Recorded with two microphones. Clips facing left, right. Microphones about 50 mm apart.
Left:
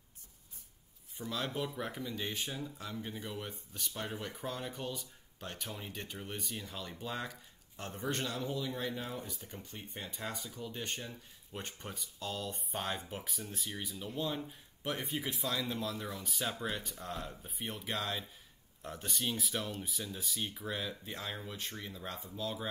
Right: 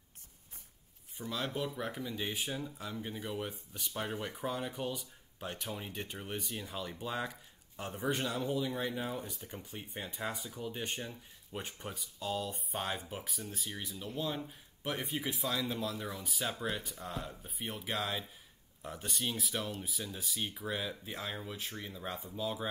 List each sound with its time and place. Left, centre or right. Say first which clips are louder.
1.1 s speech: even; centre
11.1 s speech: right 1 dB; centre